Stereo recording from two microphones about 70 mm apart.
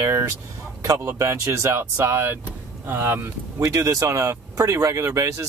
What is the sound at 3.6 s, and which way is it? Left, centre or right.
Speech, right.